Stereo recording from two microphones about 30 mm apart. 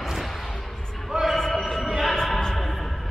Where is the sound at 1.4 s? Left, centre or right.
Centre.